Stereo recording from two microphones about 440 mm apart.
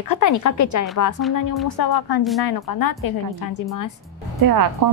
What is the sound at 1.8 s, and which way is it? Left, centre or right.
A woman's voice, left.